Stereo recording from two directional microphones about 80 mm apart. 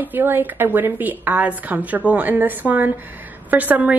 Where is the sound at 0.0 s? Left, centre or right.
Right.